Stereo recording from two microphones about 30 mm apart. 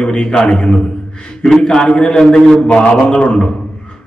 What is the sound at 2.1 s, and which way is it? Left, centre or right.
Speech, centre.